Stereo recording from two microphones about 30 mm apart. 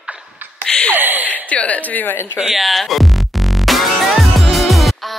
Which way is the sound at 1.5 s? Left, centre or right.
Left.